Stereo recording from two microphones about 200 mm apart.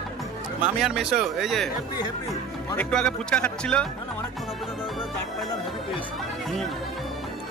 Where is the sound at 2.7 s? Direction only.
5° left (ahead or behind).